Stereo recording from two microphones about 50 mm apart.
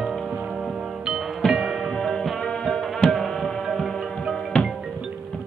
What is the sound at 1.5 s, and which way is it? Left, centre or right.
Music, centre.